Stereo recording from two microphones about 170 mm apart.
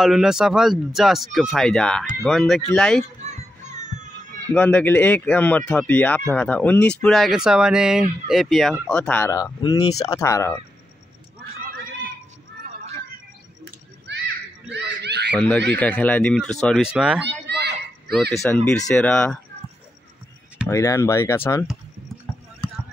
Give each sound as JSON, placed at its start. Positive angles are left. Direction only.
{"t": 0.0, "sound": "speech", "side_deg": 0}
{"t": 3.3, "sound": "children playing", "side_deg": -45}
{"t": 4.6, "sound": "speech", "side_deg": 10}
{"t": 14.1, "sound": "children playing", "side_deg": -90}
{"t": 14.7, "sound": "a sound", "side_deg": -80}
{"t": 15.3, "sound": "speech", "side_deg": 10}
{"t": 17.3, "sound": "a sound", "side_deg": -80}
{"t": 18.4, "sound": "speech", "side_deg": 10}
{"t": 20.6, "sound": "speech", "side_deg": 20}